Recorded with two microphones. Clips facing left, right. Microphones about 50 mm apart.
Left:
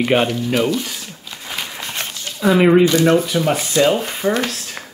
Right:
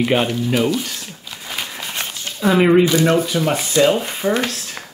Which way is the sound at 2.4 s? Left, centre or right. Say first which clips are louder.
Left 1 dB; centre.